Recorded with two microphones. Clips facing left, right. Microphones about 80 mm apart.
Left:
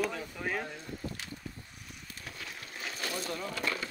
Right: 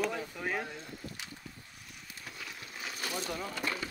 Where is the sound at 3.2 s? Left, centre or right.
Centre.